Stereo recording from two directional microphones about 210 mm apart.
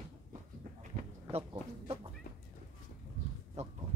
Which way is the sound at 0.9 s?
30° right (ahead or behind).